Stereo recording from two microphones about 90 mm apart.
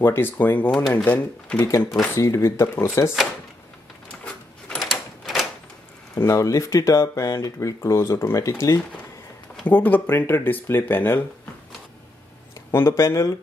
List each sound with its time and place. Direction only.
0.0 s speech: 25° left (ahead or behind)
2.1 s speech: 35° left (ahead or behind)
4.2 s a sound: 10° left (ahead or behind)
4.7 s a sound: centre (ahead or behind)
6.1 s speech: 35° left (ahead or behind)
9.7 s speech: 20° left (ahead or behind)
12.7 s speech: 35° left (ahead or behind)